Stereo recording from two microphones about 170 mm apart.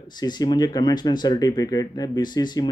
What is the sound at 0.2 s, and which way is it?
Speech, 25° left (ahead or behind).